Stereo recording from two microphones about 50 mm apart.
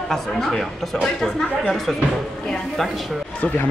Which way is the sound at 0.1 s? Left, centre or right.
Centre.